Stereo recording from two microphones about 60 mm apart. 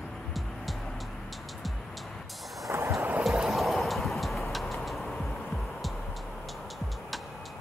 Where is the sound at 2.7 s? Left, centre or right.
Right.